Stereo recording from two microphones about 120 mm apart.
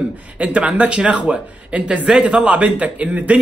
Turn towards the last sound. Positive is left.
turn(degrees=-10)  # may be behind; listen again after turning